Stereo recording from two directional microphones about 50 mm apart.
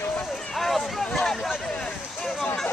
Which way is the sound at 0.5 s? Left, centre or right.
Centre.